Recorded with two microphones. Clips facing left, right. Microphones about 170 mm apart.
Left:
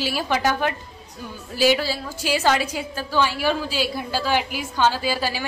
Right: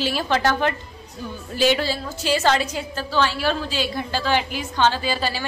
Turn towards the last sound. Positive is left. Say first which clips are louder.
# even
turn(degrees=10)  # may be behind; listen again after turning